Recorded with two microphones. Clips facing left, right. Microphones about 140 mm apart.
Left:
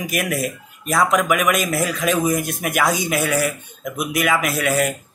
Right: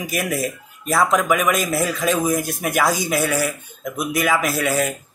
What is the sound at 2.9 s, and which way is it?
Speech, 20° left (ahead or behind).